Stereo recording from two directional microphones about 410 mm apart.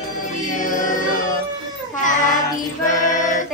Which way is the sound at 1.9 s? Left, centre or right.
Centre.